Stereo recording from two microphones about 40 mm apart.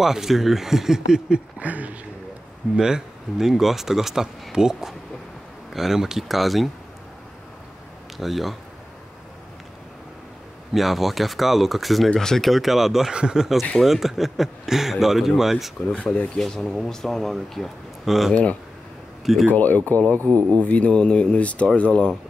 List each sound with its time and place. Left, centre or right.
0.0 s speech: centre
1.6 s speech: right
2.7 s speech: centre
8.2 s speech: centre
10.7 s speech: centre
12.2 s speech: centre
13.1 s speech: right
13.4 s speech: centre
16.3 s speech: centre
18.0 s speech: centre
18.3 s speech: left
19.4 s speech: left